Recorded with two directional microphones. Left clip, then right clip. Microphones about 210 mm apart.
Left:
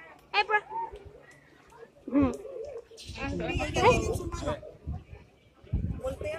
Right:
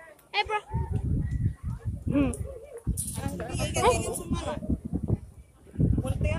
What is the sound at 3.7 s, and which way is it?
Music, 30° left (ahead or behind).